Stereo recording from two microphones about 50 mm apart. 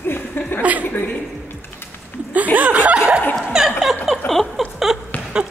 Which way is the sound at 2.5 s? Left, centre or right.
Right.